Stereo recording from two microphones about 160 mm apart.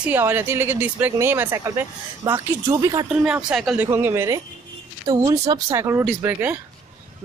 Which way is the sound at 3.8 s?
15° right (ahead or behind).